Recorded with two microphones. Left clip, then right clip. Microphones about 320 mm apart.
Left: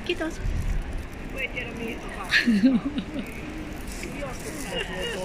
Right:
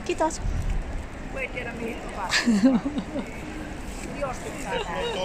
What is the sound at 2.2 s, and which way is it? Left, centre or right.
Speech, centre.